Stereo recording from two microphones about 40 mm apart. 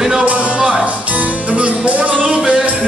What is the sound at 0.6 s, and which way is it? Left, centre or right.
Music, centre.